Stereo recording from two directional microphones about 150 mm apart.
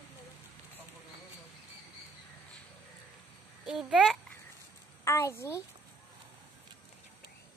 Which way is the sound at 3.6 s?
Centre (ahead or behind).